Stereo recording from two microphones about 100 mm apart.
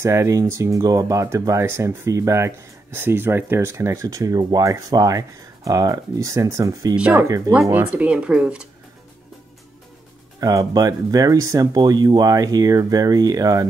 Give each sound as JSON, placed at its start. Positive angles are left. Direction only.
{"t": 0.0, "sound": "speech", "side_deg": -30}
{"t": 7.7, "sound": "speech", "side_deg": -15}
{"t": 10.4, "sound": "speech", "side_deg": -40}